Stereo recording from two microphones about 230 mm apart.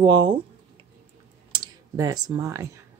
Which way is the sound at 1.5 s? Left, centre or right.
Centre.